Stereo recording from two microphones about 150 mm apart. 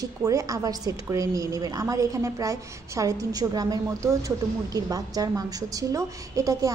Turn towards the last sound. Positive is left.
turn(degrees=-20)  # may be behind; listen again after turning